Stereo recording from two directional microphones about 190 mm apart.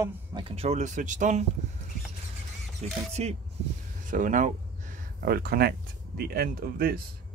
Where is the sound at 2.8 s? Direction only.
35° right (ahead or behind); by 7.0 s 55° right (ahead or behind).